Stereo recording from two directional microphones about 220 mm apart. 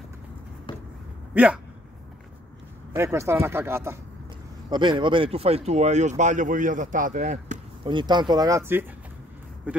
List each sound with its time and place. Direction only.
1.3 s speech: 5° right (ahead or behind)
2.9 s speech: 10° right (ahead or behind); by 7.5 s 35° right (ahead or behind)
7.8 s speech: 20° right (ahead or behind)
9.7 s a sound: 5° right (ahead or behind)